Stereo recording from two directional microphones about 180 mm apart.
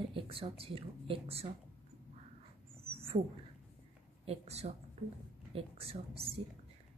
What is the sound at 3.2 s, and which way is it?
Speech, 35° right (ahead or behind).